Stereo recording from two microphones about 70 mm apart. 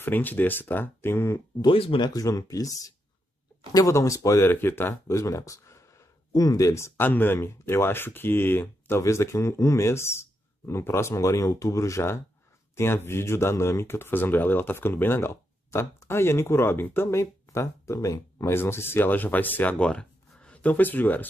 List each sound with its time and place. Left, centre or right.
0.0 s speech: left
1.6 s speech: left
2.1 s speech: left
4.5 s speech: left
6.3 s speech: left
7.0 s speech: left
18.5 s speech: left